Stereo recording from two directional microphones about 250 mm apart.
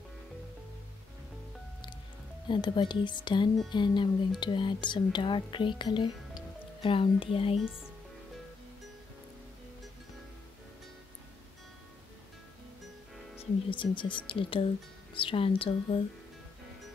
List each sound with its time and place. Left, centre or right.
2.4 s speech: centre
13.4 s speech: centre